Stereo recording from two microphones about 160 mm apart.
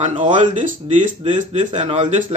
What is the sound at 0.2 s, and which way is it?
Speech, 50° right (ahead or behind).